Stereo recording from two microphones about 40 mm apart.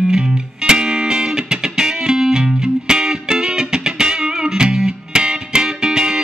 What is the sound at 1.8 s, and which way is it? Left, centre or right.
Music, centre.